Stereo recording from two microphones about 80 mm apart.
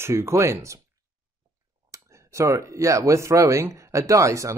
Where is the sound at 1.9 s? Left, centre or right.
Right.